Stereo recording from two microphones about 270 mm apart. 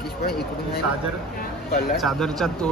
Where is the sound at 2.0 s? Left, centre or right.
Centre.